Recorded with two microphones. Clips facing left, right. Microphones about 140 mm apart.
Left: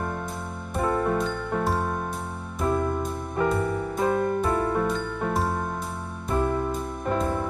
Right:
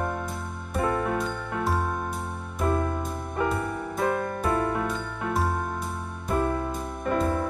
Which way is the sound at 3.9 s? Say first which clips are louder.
Left 2 dB; 20° left (ahead or behind).